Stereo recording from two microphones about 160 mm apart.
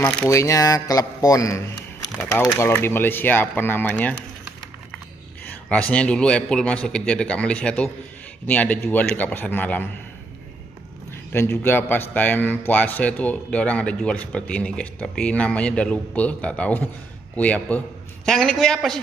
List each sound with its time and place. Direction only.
0.0 s a man's voice: 15° left (ahead or behind)
5.7 s a man's voice: 10° left (ahead or behind)
11.1 s a man's voice: 15° left (ahead or behind)